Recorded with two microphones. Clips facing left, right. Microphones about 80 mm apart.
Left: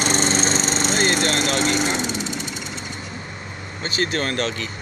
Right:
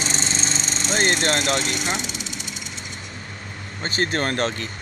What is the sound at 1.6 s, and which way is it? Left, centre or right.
Vehicle, left.